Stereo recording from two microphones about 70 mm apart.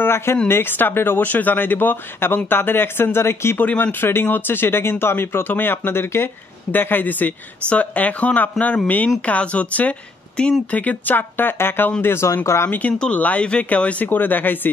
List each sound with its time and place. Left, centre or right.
0.0 s a sound: left
0.5 s speech: left
3.6 s speech: left
13.0 s speech: centre